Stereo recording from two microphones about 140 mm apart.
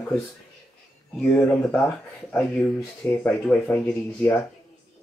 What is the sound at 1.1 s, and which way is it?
Speech, 10° left (ahead or behind).